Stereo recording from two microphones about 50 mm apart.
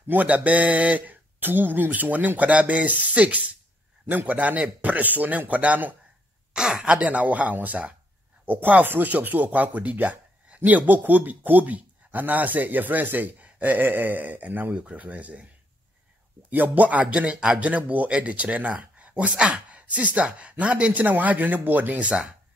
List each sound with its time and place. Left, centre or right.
0.1 s speech: right
6.5 s speech: centre; by 14.7 s right
14.7 s speech: right
16.4 s speech: right
17.0 s speech: right